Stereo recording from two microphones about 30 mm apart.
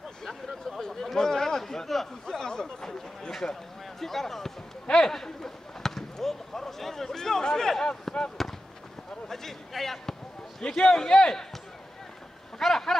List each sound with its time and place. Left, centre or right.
0.5 s chatter: centre
0.8 s chatter: centre
1.6 s a sound: centre
2.2 s a sound: left
4.0 s a man's voice: centre
4.9 s a sound: centre
8.1 s basketball bounce: centre
9.3 s basketball bounce: centre
10.7 s a man's voice: centre
12.5 s vehicle: centre